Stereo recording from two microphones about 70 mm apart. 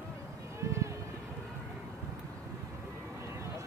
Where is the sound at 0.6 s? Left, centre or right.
Right.